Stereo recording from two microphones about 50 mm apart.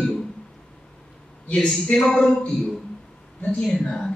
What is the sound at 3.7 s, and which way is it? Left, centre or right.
Speech, centre.